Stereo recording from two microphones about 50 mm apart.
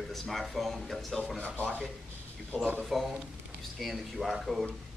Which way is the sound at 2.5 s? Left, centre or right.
Right.